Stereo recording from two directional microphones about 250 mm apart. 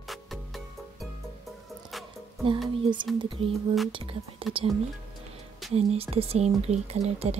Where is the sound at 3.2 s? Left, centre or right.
Right.